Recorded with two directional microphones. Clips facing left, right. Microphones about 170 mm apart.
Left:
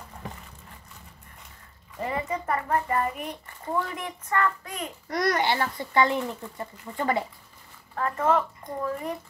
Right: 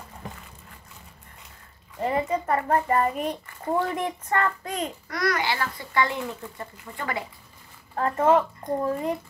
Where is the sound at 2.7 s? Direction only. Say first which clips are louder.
Right 4 dB; 30° right (ahead or behind).